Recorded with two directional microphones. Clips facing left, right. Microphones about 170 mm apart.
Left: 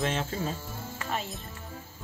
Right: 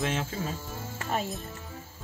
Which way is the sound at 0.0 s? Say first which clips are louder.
Even; 10° right (ahead or behind).